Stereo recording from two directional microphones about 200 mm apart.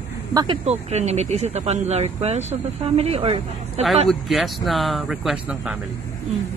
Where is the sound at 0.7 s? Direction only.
35° right (ahead or behind).